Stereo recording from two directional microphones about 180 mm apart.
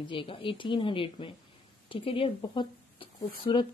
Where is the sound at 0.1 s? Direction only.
30° left (ahead or behind).